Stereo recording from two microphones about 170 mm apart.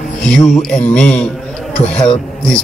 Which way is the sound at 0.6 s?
5° left (ahead or behind).